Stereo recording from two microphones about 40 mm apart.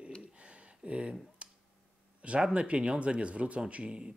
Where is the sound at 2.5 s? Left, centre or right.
Right.